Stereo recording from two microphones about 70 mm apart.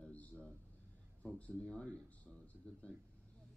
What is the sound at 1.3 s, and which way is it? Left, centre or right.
Speech, centre.